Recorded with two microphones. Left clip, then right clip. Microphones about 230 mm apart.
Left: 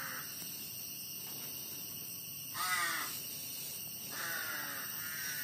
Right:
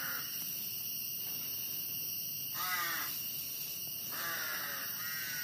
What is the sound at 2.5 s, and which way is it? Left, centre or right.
Crow, left.